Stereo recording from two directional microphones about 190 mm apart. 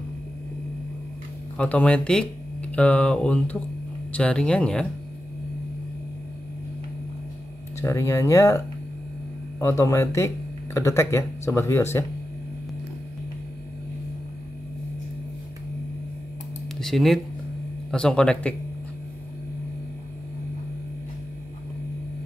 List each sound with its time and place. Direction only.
1.6 s speech: 5° left (ahead or behind)
7.8 s speech: 15° left (ahead or behind)
16.8 s speech: centre (ahead or behind)